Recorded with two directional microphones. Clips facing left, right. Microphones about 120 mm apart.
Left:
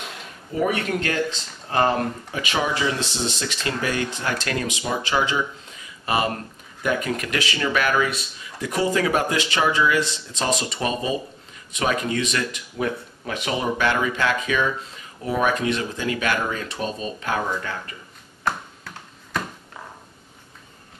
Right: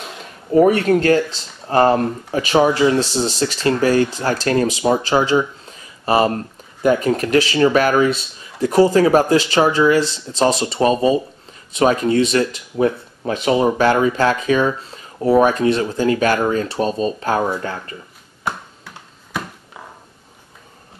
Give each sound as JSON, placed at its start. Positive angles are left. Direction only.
{"t": 0.6, "sound": "speech", "side_deg": -40}